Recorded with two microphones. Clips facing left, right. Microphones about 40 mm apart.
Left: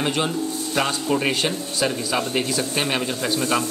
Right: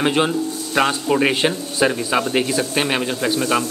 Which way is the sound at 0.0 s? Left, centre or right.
Right.